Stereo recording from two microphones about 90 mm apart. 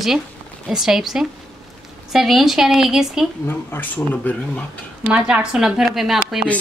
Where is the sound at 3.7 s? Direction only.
20° left (ahead or behind).